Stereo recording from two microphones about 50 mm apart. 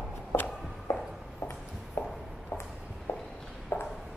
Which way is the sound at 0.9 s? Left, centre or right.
Left.